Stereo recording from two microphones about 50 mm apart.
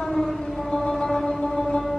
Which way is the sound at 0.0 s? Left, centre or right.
Centre.